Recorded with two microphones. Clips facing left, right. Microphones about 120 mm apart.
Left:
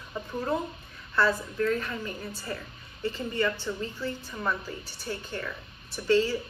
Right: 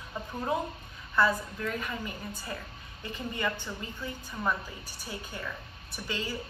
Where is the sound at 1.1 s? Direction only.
15° right (ahead or behind).